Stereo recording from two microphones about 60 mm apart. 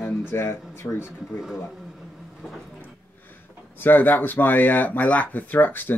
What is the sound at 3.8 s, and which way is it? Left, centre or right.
Speech, left.